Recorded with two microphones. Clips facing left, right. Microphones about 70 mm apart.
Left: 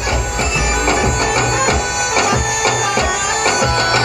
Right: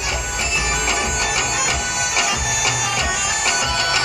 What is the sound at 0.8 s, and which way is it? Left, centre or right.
Music, left.